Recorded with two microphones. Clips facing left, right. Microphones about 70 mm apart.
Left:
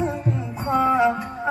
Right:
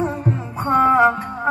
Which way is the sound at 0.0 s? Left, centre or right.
Right.